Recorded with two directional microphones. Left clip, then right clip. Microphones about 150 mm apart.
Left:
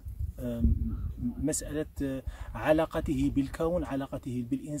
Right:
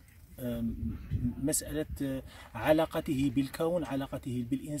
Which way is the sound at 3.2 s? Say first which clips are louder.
Left 1 dB; 30° left (ahead or behind).